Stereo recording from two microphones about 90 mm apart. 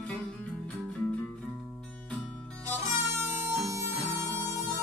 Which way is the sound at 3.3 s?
30° right (ahead or behind).